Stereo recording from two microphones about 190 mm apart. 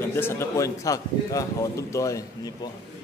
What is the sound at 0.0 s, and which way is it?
A man's voice, 10° left (ahead or behind).